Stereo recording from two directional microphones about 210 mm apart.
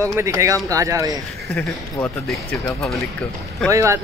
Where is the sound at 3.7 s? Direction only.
15° right (ahead or behind).